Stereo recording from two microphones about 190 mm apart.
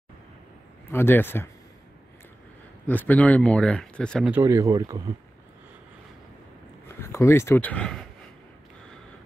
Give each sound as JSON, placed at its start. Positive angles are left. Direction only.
{"t": 0.9, "sound": "a man's voice", "side_deg": 10}
{"t": 2.9, "sound": "speech", "side_deg": 10}
{"t": 4.3, "sound": "speech", "side_deg": -15}
{"t": 7.0, "sound": "speech", "side_deg": 15}